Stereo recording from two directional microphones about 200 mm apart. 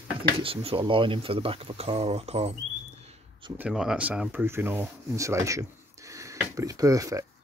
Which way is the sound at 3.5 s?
5° right (ahead or behind).